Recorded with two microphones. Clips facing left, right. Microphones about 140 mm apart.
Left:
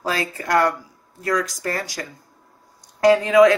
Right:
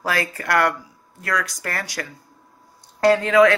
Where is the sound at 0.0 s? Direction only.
20° left (ahead or behind).